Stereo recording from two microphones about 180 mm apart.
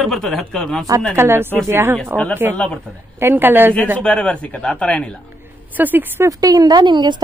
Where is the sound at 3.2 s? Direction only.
10° right (ahead or behind).